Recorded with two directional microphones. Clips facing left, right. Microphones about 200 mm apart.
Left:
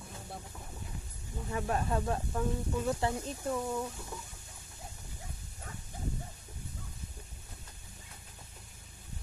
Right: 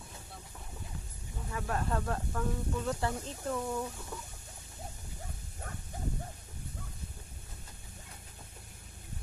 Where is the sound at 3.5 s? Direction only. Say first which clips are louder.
Even; 5° left (ahead or behind).